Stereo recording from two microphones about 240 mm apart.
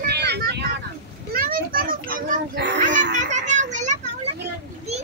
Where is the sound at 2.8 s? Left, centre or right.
Right.